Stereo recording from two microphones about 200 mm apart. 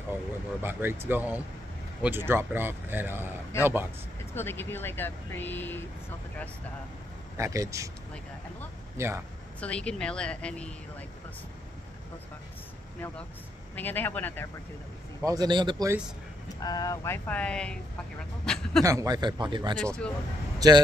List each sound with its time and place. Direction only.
0.6 s speech: 10° right (ahead or behind)
4.4 s speech: 10° left (ahead or behind)
7.3 s speech: 15° right (ahead or behind)
8.9 s speech: 15° right (ahead or behind)
9.6 s a woman's voice: 5° left (ahead or behind)
13.7 s speech: 10° left (ahead or behind)
15.2 s speech: 20° right (ahead or behind)
16.5 s a woman's voice: 20° left (ahead or behind); by 18.8 s 5° left (ahead or behind)
18.9 s speech: 15° right (ahead or behind)
19.8 s a woman's voice: 5° left (ahead or behind)
20.5 s speech: 20° right (ahead or behind)